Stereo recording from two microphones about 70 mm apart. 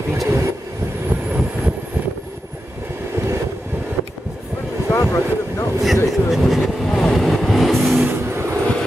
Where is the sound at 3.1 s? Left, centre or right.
Right.